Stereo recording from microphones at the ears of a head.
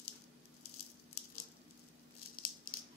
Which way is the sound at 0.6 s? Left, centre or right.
Left.